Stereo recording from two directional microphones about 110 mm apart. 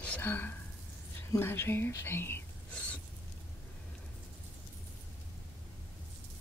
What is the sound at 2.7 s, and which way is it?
Rodents, 10° left (ahead or behind).